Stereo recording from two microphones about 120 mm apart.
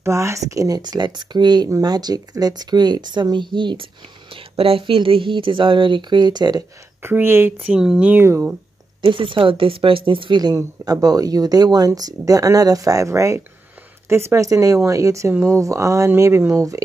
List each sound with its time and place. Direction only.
0.0 s speech: 25° right (ahead or behind)
7.0 s speech: 20° right (ahead or behind)
7.6 s speech: 5° right (ahead or behind); by 8.5 s 20° right (ahead or behind)
9.0 s speech: 45° right (ahead or behind); by 16.8 s 25° right (ahead or behind)